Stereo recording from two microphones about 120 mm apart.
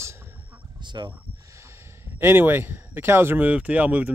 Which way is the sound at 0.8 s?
40° right (ahead or behind).